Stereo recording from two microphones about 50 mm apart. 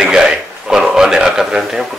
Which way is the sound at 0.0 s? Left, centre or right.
Centre.